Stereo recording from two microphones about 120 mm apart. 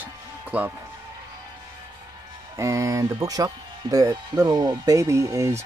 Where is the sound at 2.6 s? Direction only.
25° right (ahead or behind).